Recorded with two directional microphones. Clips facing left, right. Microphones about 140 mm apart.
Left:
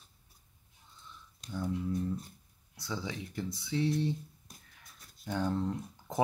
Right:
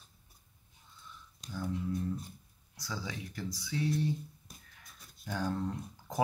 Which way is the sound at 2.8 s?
25° left (ahead or behind).